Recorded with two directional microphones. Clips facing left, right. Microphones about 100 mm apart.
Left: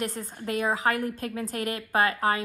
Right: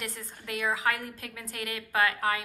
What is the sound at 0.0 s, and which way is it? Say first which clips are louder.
A woman's voice: left 8 dB; 40° left (ahead or behind).